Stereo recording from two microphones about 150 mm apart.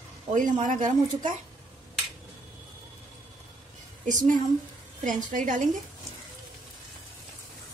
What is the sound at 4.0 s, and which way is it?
A woman's voice, 60° right (ahead or behind).